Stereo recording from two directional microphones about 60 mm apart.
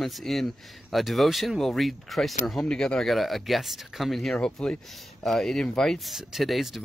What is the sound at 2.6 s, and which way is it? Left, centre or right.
Speech, centre.